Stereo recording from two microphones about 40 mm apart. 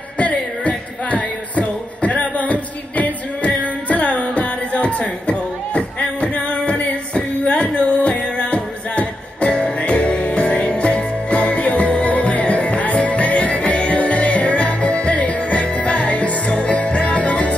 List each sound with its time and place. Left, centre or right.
0.2 s music: left